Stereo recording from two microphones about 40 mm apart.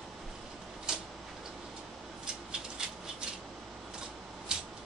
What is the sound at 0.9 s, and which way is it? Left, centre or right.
Tick-tock, centre.